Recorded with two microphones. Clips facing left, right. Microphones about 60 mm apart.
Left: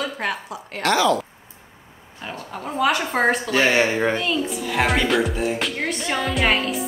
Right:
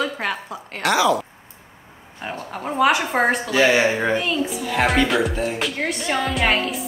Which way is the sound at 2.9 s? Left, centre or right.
Centre.